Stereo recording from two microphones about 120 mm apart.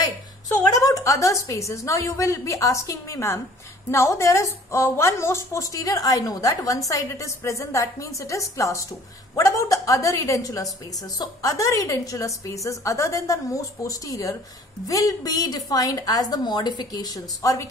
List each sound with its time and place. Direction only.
0.0 s a woman's voice: 30° left (ahead or behind)